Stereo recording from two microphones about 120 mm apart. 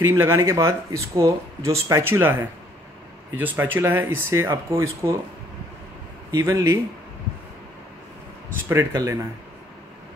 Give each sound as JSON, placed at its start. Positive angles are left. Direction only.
{"t": 0.2, "sound": "speech", "side_deg": -25}
{"t": 6.3, "sound": "speech", "side_deg": -25}
{"t": 8.6, "sound": "speech", "side_deg": -25}